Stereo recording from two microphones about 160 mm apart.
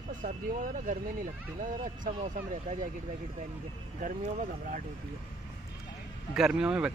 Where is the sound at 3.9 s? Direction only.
55° right (ahead or behind).